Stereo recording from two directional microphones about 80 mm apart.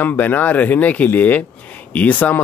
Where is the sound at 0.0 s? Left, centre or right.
Left.